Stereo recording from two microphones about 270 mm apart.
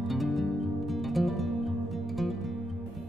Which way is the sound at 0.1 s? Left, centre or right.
Centre.